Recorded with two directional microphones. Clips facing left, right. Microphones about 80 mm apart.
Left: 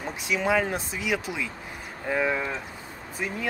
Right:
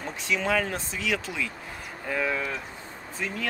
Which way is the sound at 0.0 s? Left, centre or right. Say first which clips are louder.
Left 1 dB; centre.